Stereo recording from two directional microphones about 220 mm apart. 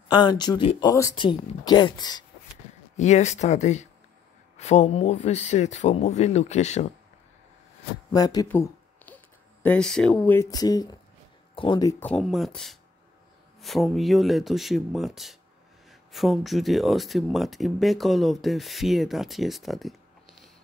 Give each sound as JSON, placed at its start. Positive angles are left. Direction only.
{"t": 0.1, "sound": "speech", "side_deg": 20}
{"t": 3.0, "sound": "speech", "side_deg": 30}
{"t": 8.1, "sound": "speech", "side_deg": 15}